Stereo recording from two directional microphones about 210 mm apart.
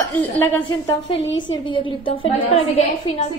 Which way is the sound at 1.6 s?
25° left (ahead or behind).